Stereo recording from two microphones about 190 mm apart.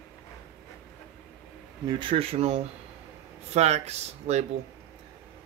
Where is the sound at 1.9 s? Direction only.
25° right (ahead or behind).